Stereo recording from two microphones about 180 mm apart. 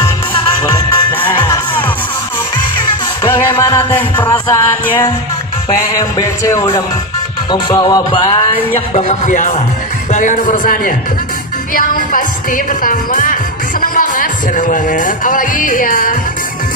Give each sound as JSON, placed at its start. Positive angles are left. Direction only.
{"t": 0.7, "sound": "music", "side_deg": 10}
{"t": 3.3, "sound": "music", "side_deg": 15}
{"t": 5.9, "sound": "a man's voice", "side_deg": 15}